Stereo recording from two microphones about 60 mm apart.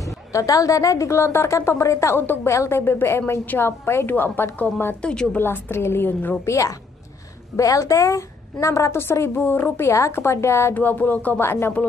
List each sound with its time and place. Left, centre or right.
0.0 s a woman's voice: left
2.1 s a woman's voice: left
2.5 s a woman's voice: left
2.8 s a woman's voice: left
5.0 s a woman's voice: centre
5.4 s a woman's voice: left
6.4 s a woman's voice: left
8.9 s a woman's voice: left
10.7 s a woman's voice: left